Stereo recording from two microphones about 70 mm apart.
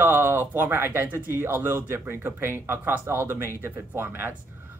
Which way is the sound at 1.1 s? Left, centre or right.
Right.